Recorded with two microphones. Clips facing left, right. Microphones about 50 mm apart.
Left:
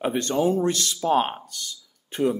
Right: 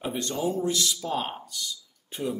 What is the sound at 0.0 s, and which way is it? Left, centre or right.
Speech, left.